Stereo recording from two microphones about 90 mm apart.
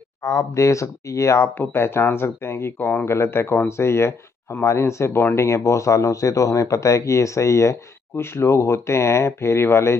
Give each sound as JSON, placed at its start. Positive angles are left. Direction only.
{"t": 0.2, "sound": "speech", "side_deg": 35}